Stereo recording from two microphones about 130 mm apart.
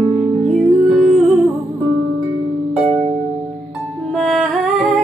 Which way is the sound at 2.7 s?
5° right (ahead or behind).